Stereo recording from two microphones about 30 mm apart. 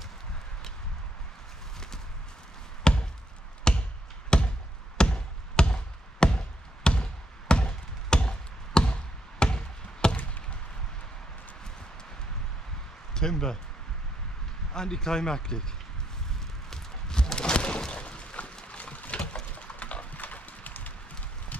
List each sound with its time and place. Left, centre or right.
2.9 s chop: left
4.3 s a sound: left
4.9 s chop: left
13.1 s speech: left
14.7 s speech: left
16.7 s walk: left
17.4 s a sound: left
18.7 s boat: left
19.5 s a sound: left
20.2 s clip-clop: left